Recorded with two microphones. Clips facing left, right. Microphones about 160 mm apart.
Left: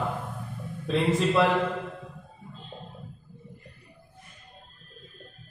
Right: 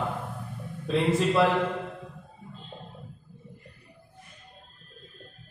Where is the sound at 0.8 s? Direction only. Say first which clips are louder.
Even; centre (ahead or behind).